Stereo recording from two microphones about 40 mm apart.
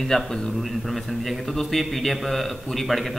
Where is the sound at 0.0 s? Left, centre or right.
Centre.